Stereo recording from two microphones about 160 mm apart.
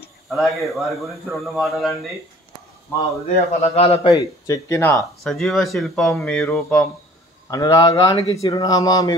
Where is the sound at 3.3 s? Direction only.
40° left (ahead or behind).